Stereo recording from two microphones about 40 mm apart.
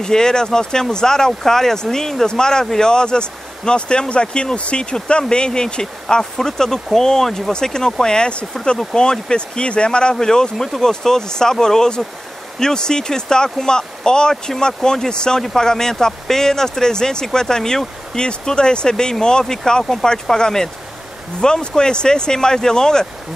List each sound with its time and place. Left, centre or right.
0.0 s speech: centre